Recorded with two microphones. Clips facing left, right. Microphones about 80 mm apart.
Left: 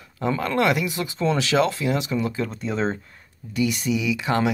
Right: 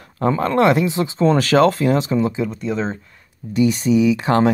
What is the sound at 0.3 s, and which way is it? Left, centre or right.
Speech, right.